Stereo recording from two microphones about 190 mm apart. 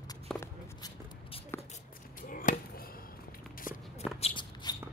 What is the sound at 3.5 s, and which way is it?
Walk, 45° left (ahead or behind).